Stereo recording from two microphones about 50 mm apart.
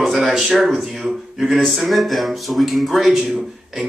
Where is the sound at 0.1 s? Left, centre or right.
Centre.